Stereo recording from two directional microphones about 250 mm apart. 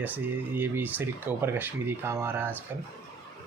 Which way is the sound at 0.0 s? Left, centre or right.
Centre.